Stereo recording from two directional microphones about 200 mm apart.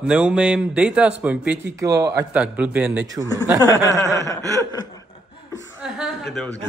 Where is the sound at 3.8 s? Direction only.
15° left (ahead or behind).